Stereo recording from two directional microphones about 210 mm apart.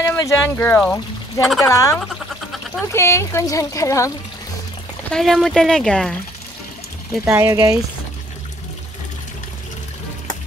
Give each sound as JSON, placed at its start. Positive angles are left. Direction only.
{"t": 0.0, "sound": "speech", "side_deg": 15}
{"t": 1.6, "sound": "speech", "side_deg": 15}
{"t": 5.1, "sound": "speech", "side_deg": 0}
{"t": 7.2, "sound": "speech", "side_deg": -10}